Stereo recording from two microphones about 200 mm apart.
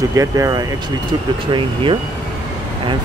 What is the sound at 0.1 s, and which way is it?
Speech, 15° right (ahead or behind).